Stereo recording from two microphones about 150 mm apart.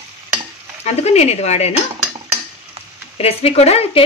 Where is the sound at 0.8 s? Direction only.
45° left (ahead or behind).